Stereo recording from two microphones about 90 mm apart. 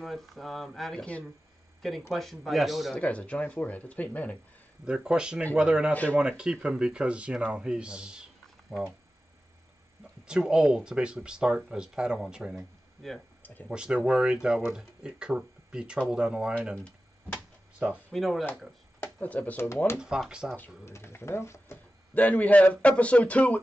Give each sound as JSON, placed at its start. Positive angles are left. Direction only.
{"t": 0.0, "sound": "a man's voice", "side_deg": 0}
{"t": 3.0, "sound": "speech", "side_deg": 15}
{"t": 4.8, "sound": "speech", "side_deg": -10}
{"t": 10.2, "sound": "speech", "side_deg": -10}
{"t": 16.7, "sound": "a sound", "side_deg": 10}
{"t": 18.1, "sound": "a man's voice", "side_deg": 0}
{"t": 19.1, "sound": "speech", "side_deg": 15}
{"t": 20.0, "sound": "speech", "side_deg": -10}
{"t": 20.8, "sound": "speech", "side_deg": 30}
{"t": 22.1, "sound": "speech", "side_deg": 15}